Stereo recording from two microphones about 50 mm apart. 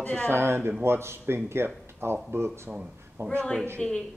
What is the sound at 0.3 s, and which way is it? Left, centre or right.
Speech, right.